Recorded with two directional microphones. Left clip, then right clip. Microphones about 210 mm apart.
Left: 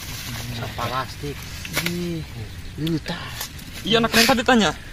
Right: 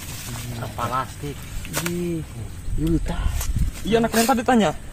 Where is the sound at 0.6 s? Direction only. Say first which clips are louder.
Right 1 dB; 20° right (ahead or behind).